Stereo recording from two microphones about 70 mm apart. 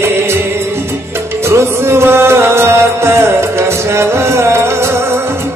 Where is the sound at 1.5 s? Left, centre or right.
Right.